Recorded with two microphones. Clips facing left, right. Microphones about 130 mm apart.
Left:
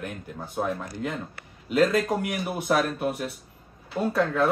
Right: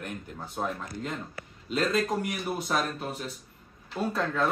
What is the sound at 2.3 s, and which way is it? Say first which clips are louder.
Speech: left 4 dB; 65° left (ahead or behind).